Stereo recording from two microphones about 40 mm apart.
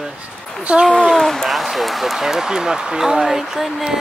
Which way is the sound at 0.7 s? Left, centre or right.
Right.